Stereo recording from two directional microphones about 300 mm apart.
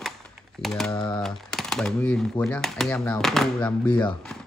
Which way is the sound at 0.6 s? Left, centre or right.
Centre.